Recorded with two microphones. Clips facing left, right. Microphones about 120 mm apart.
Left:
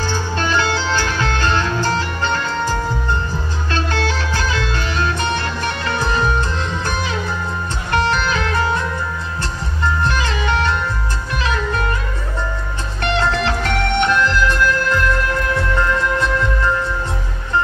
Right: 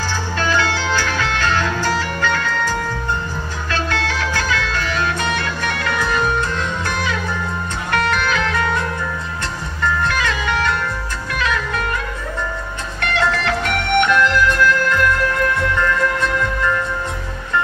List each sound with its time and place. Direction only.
0.4 s music: 25° left (ahead or behind)
7.9 s music: 30° left (ahead or behind)
9.8 s music: 30° left (ahead or behind)
13.0 s music: 30° left (ahead or behind)